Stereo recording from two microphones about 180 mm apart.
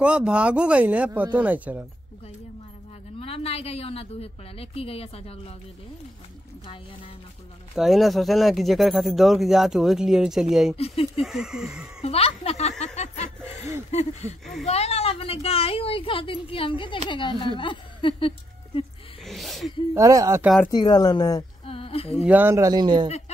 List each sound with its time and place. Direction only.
0.0 s speech: 5° right (ahead or behind)
3.2 s a woman's voice: 35° left (ahead or behind)
7.7 s speech: centre (ahead or behind)
10.8 s a woman's voice: 35° left (ahead or behind)
11.2 s speech: 5° right (ahead or behind)
12.0 s speech: 35° left (ahead or behind)
14.4 s speech: centre (ahead or behind)
14.7 s a woman's voice: 35° left (ahead or behind)
19.2 s speech: centre (ahead or behind)
19.9 s speech: 20° right (ahead or behind)
20.7 s speech: 25° left (ahead or behind)
21.6 s humming: 30° left (ahead or behind)
22.2 s speech: 10° right (ahead or behind)
23.0 s speech: 35° left (ahead or behind)